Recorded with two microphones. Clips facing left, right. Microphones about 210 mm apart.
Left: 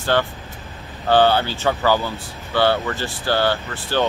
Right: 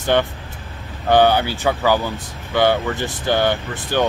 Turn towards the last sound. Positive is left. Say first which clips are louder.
# right 1 dB
turn(degrees=-15)  # may be behind; listen again after turning